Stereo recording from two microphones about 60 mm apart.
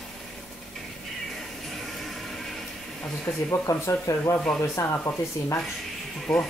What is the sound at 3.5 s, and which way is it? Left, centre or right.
Speech, left.